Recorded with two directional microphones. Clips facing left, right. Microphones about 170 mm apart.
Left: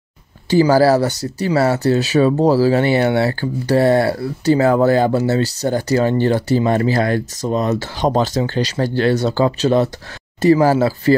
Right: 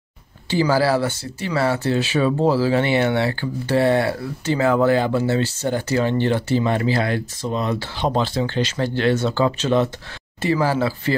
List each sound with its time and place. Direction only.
0.5 s speech: 40° left (ahead or behind)